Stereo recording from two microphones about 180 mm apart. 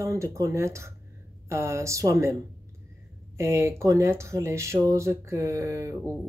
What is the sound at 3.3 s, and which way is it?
Speech, 15° right (ahead or behind).